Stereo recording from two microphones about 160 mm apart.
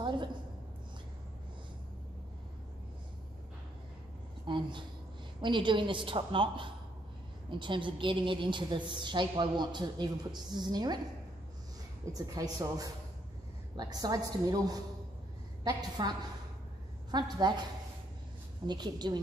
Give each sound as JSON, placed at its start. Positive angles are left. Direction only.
{"t": 4.5, "sound": "a sound", "side_deg": -30}
{"t": 5.4, "sound": "a woman's voice", "side_deg": -30}
{"t": 12.1, "sound": "a woman's voice", "side_deg": -25}
{"t": 17.1, "sound": "a woman's voice", "side_deg": -25}
{"t": 18.7, "sound": "a woman's voice", "side_deg": -25}